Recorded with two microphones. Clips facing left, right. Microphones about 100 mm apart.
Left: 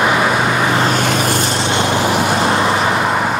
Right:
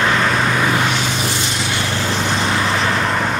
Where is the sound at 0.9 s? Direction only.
55° left (ahead or behind).